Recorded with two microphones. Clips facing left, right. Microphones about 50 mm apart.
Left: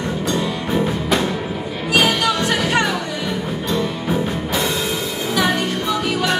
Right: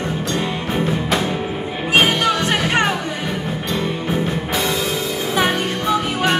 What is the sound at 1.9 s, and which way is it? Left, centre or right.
Music, right.